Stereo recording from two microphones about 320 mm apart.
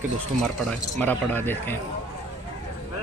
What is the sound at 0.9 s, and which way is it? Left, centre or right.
Speech, centre.